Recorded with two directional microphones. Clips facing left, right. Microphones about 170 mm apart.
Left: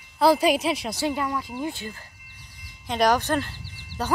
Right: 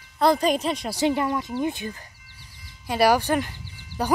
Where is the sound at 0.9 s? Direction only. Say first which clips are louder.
Right 4 dB; 20° right (ahead or behind).